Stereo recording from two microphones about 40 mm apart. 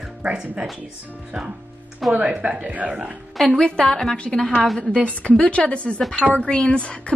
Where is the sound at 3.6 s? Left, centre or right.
Centre.